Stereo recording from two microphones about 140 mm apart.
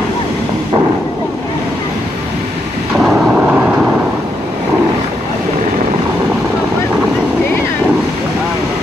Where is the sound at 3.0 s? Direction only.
Centre (ahead or behind).